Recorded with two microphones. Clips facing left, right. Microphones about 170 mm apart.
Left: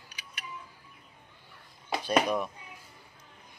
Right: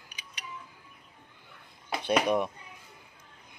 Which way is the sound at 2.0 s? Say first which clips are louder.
Right 1 dB; 20° right (ahead or behind).